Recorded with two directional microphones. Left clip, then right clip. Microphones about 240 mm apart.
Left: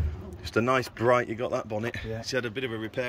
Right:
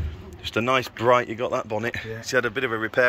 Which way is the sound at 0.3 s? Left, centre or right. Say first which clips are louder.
Right 3 dB; centre.